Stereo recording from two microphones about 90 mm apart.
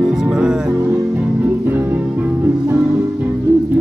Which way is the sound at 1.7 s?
20° right (ahead or behind).